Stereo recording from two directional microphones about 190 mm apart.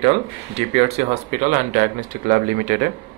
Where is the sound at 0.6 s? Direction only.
35° right (ahead or behind).